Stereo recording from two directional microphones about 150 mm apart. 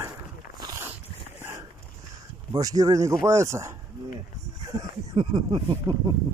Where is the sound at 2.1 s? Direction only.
25° right (ahead or behind).